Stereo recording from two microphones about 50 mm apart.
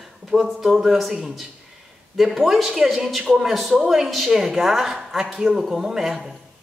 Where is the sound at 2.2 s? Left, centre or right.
Centre.